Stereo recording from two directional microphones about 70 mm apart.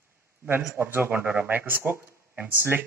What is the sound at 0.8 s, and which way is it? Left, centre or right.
Speech, right.